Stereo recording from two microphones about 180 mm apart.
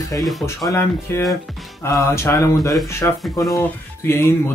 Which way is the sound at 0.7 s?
15° left (ahead or behind).